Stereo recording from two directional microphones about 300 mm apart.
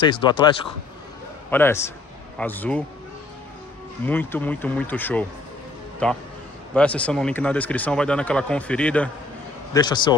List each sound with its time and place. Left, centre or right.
0.0 s speech: centre
1.5 s speech: centre
4.0 s speech: centre